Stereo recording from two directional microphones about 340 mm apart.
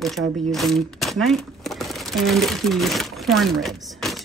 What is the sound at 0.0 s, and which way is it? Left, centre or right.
Speech, centre.